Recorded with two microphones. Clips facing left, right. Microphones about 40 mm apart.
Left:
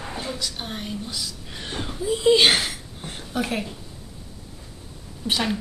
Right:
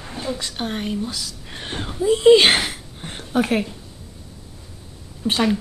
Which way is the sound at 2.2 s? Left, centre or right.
Right.